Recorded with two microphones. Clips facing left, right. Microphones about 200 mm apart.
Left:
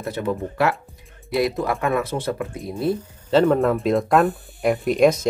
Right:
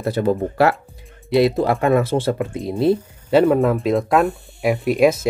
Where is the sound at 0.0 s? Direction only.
35° right (ahead or behind).